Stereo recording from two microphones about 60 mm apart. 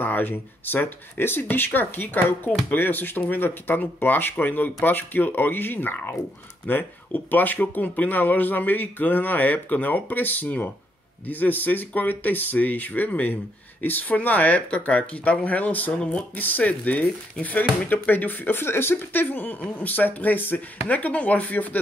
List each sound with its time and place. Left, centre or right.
0.0 s speech: left
16.0 s speech: centre
16.3 s speech: left